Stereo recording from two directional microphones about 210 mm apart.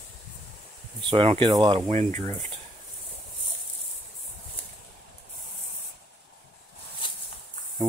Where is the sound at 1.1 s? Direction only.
25° right (ahead or behind).